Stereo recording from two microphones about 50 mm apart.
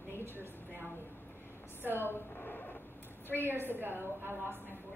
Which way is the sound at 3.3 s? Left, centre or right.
Right.